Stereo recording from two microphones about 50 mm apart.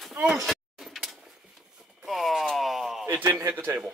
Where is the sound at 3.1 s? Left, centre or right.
Right.